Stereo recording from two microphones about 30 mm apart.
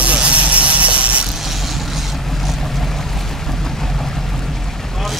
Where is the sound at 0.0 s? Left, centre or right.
Right.